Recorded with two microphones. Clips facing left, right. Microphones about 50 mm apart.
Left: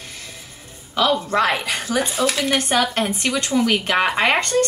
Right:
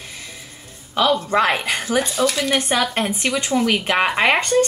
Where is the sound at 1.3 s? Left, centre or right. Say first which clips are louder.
Right 1 dB; centre.